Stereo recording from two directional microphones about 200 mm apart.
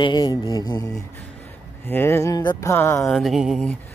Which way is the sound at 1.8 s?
10° left (ahead or behind).